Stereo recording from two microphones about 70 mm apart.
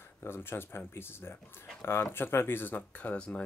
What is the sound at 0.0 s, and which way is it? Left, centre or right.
Speech, left.